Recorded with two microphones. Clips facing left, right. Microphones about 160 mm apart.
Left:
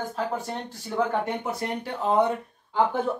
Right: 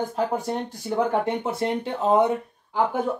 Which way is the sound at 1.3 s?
25° right (ahead or behind).